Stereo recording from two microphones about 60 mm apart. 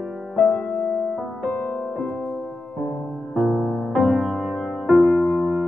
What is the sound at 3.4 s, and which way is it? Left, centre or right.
Music, centre.